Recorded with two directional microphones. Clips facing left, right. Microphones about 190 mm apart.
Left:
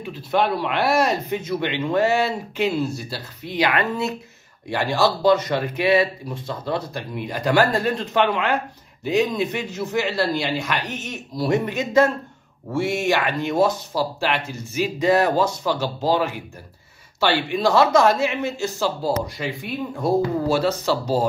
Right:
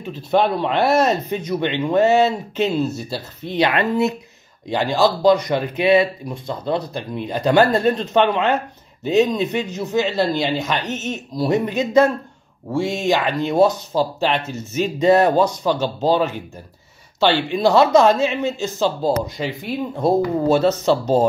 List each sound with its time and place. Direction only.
0.3 s speech: 25° right (ahead or behind)
17.6 s speech: 20° right (ahead or behind)